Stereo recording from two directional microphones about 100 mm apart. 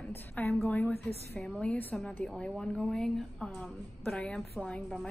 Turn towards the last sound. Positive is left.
turn(degrees=5)  # may be behind; listen again after turning